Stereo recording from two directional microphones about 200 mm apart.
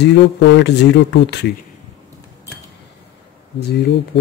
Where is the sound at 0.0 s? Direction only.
65° left (ahead or behind).